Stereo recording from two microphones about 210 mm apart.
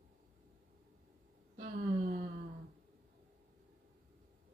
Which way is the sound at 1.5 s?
35° right (ahead or behind).